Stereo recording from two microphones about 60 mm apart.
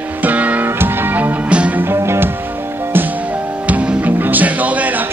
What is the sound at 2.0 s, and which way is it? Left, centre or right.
Music, right.